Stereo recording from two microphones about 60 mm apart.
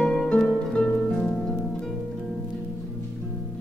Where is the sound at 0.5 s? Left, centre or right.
Centre.